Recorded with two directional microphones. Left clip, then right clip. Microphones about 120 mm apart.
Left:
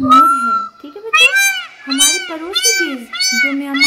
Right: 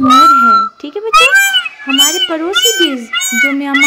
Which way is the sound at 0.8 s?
65° right (ahead or behind).